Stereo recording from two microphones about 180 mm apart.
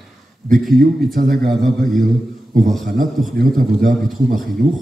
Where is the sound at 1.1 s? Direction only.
55° right (ahead or behind).